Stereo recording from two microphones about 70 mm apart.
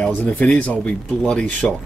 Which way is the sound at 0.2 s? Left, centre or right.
Centre.